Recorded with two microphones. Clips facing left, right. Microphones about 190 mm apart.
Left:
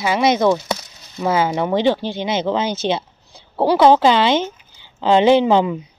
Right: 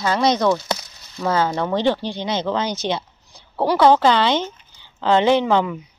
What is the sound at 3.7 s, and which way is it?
Speech, 20° left (ahead or behind).